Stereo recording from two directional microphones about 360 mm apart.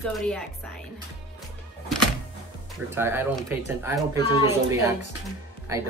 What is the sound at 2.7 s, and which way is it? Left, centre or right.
Speech, centre.